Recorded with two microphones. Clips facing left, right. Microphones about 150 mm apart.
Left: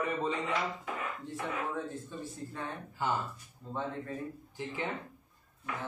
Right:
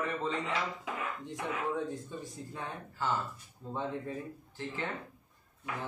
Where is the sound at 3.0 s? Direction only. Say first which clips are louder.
Left 1 dB; 15° left (ahead or behind).